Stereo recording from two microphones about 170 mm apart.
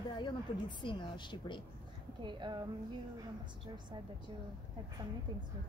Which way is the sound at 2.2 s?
25° right (ahead or behind).